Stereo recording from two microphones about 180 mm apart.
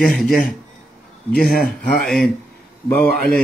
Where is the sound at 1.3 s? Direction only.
55° left (ahead or behind).